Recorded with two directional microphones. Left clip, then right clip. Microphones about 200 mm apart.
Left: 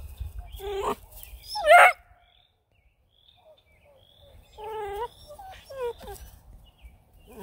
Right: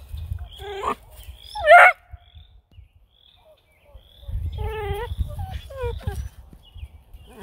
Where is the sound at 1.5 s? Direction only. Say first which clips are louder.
Right 4 dB; 50° left (ahead or behind).